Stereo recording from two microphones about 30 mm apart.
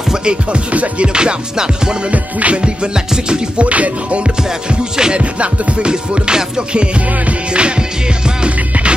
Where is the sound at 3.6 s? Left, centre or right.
Right.